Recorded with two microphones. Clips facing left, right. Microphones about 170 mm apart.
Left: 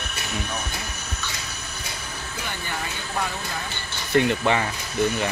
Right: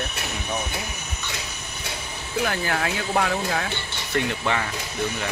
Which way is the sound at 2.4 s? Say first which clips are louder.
Right 9 dB; 90° right.